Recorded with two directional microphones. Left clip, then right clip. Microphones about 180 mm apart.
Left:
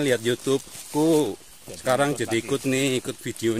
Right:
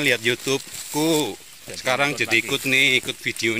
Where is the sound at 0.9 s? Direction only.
Centre (ahead or behind).